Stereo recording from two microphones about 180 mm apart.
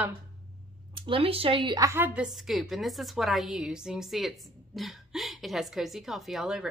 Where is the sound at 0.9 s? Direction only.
30° right (ahead or behind).